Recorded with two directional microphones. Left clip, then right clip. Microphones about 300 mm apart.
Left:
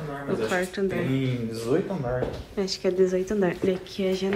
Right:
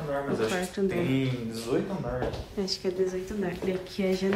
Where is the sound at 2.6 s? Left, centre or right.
Centre.